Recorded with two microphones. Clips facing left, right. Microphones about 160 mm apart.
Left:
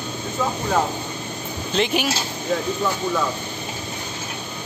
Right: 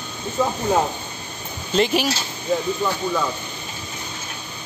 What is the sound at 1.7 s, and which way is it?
Speech, centre (ahead or behind).